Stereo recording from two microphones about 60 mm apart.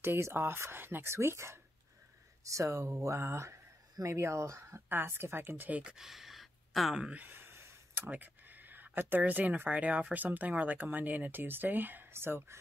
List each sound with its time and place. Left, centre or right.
0.0 s speech: right
2.4 s speech: right
5.7 s speech: centre
5.9 s sigh: centre
7.2 s a sound: right
8.1 s speech: right